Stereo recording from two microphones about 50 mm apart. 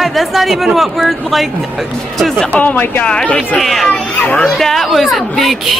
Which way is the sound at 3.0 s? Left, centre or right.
Left.